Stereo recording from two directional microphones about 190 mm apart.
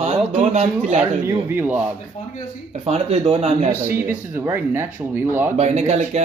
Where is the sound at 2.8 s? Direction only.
35° right (ahead or behind).